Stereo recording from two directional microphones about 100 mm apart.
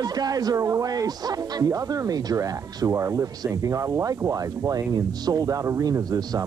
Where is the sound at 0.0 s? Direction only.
40° right (ahead or behind).